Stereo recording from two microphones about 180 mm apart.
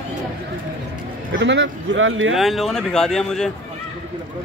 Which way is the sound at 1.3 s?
85° right.